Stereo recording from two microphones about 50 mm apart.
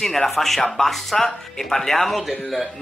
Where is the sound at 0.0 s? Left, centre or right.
Centre.